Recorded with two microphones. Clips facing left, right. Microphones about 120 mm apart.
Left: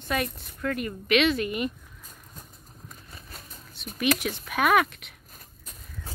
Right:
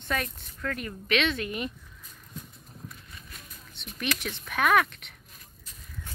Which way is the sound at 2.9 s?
35° left (ahead or behind).